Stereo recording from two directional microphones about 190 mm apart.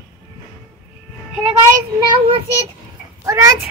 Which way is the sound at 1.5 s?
25° right (ahead or behind).